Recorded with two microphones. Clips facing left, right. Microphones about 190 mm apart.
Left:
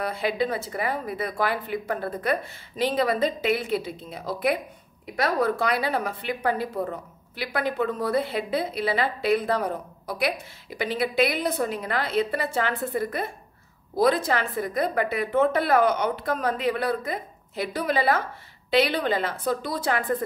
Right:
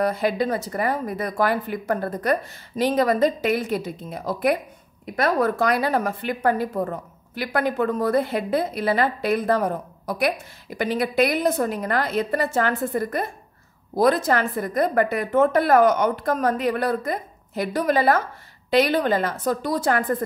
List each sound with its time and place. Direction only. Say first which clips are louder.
0.0 s a woman's voice: right 4 dB; 45° right (ahead or behind)